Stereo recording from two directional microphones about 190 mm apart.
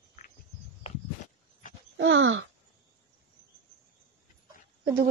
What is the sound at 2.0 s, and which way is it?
Groan, 90° right.